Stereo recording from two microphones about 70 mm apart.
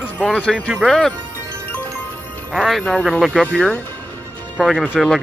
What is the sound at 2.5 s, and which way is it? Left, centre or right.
Speech, centre.